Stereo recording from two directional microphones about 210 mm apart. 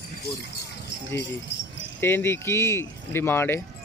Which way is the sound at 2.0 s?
10° left (ahead or behind).